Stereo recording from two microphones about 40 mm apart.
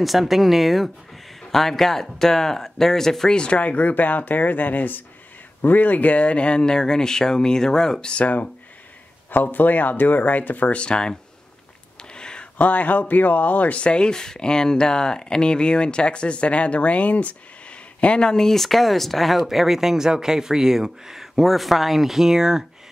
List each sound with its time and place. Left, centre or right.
0.0 s speech: centre
3.3 s speech: left
8.2 s speech: left
9.3 s speech: left
10.8 s speech: left
12.0 s a sound: left
12.5 s speech: left
13.7 s speech: left
18.4 s speech: centre